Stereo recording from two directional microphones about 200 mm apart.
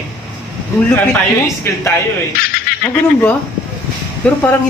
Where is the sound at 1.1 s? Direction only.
10° left (ahead or behind).